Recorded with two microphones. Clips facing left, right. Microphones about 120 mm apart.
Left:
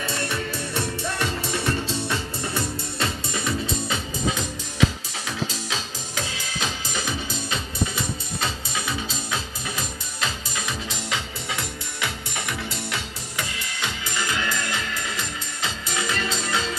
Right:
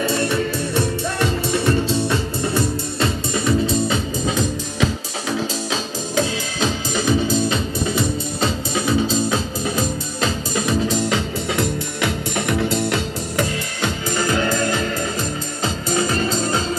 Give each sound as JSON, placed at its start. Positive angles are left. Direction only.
{"t": 2.0, "sound": "music", "side_deg": -35}
{"t": 5.7, "sound": "music", "side_deg": -30}